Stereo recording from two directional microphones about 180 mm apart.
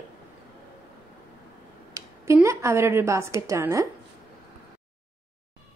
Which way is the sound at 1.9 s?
15° right (ahead or behind).